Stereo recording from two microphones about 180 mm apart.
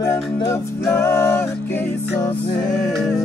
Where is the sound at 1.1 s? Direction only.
15° left (ahead or behind).